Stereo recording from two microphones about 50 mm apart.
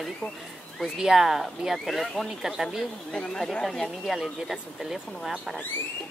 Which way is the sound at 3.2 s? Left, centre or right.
Centre.